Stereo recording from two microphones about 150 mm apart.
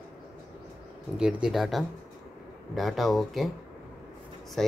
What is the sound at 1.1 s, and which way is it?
Speech, 5° right (ahead or behind).